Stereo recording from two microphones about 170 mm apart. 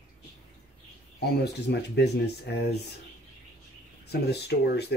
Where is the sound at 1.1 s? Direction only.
75° left (ahead or behind).